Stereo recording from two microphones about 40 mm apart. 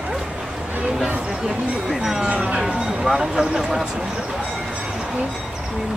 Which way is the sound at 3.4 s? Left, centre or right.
Centre.